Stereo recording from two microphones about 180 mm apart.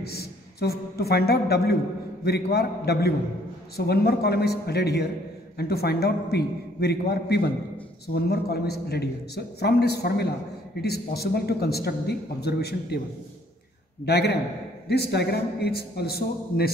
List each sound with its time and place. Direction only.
0.0 s a man's voice: 60° left (ahead or behind)
14.0 s a man's voice: 65° left (ahead or behind)